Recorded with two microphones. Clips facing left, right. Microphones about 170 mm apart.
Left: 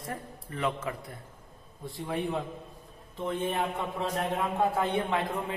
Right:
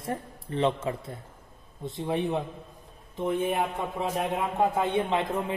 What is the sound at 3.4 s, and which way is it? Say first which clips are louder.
A man's voice: right 3 dB; 10° right (ahead or behind).